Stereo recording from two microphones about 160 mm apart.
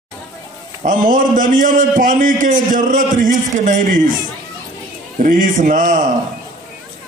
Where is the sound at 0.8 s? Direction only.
55° right (ahead or behind).